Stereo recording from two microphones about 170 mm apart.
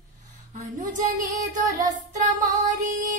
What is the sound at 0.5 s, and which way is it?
Music, 45° right (ahead or behind).